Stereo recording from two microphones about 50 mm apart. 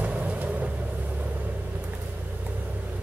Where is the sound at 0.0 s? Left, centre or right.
Right.